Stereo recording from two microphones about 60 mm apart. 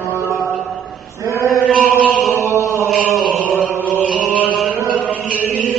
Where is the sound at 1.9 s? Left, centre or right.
Left.